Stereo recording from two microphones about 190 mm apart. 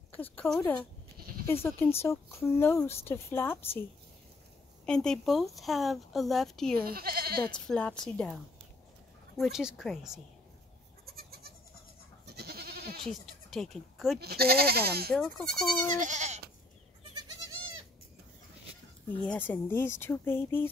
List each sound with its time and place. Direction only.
0.1 s speech: 10° left (ahead or behind)
1.1 s sheep: 50° right (ahead or behind)
1.5 s speech: 15° left (ahead or behind)
4.8 s a woman's voice: 5° left (ahead or behind)
6.8 s speech: 55° right (ahead or behind)
7.4 s a woman's voice: 5° left (ahead or behind)
9.4 s a woman's voice: 5° right (ahead or behind)
11.1 s goat: 55° right (ahead or behind)
13.0 s speech: centre (ahead or behind)
14.2 s speech: 55° right (ahead or behind)
15.1 s a woman's voice: centre (ahead or behind)
16.0 s goat: 40° right (ahead or behind)
19.2 s speech: 10° left (ahead or behind)